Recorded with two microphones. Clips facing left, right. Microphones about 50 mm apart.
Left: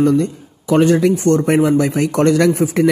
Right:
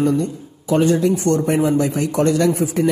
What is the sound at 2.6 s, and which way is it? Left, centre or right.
Speech, left.